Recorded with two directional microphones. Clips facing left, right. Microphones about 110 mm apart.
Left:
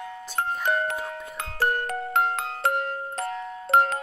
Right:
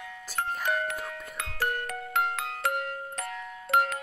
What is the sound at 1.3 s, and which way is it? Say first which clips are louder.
Glockenspiel: left 5 dB; 35° left (ahead or behind).